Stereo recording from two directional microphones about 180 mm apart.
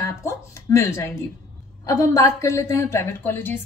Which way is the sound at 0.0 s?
15° left (ahead or behind).